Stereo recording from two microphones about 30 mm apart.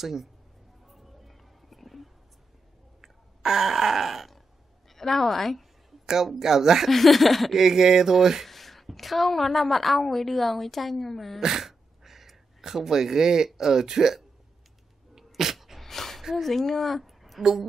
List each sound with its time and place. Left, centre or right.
0.0 s speech: centre
0.8 s a sound: centre
3.0 s groan: centre
4.8 s a woman's voice: centre
6.2 s speech: centre
6.9 s a woman's voice: centre
7.5 s speech: centre
8.5 s a woman's voice: centre
11.4 s a sound: centre
13.6 s speech: centre
15.1 s dog: centre
15.8 s a sound: centre
16.3 s a woman's voice: centre
17.4 s speech: centre